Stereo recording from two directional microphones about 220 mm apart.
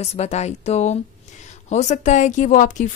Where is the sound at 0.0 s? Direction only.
30° left (ahead or behind).